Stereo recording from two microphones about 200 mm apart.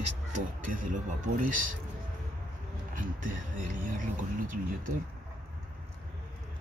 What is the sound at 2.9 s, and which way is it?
Speech, 40° right (ahead or behind).